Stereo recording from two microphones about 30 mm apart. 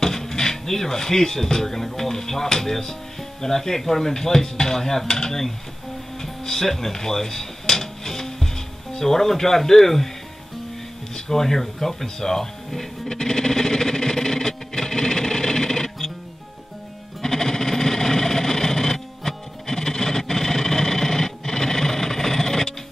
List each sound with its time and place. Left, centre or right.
0.0 s speech: centre
6.4 s a sound: centre
11.1 s speech: centre
13.1 s music: left
17.2 s bleat: centre